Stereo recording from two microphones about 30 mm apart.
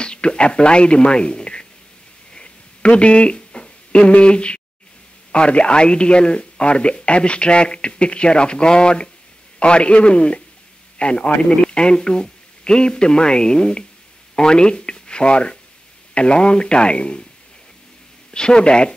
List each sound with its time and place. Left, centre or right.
0.0 s speech: left
2.3 s a sound: left
4.2 s speech: left
18.3 s speech: left